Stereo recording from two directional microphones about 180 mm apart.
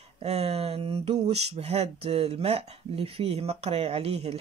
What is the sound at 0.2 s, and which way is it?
Speech, 35° right (ahead or behind).